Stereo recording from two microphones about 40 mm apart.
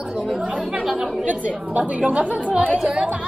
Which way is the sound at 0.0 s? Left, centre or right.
Centre.